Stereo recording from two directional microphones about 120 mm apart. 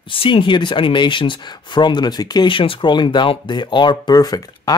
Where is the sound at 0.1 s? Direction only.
45° left (ahead or behind).